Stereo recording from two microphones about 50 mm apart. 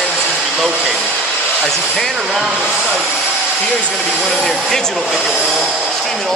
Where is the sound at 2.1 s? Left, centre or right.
Centre.